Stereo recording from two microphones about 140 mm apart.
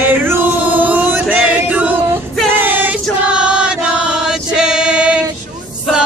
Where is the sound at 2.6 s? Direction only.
15° right (ahead or behind).